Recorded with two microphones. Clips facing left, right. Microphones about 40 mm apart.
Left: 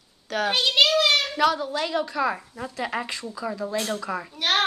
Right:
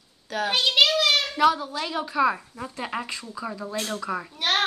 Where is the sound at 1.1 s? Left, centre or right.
Centre.